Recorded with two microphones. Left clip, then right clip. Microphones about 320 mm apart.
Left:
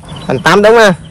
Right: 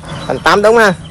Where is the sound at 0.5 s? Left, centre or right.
Left.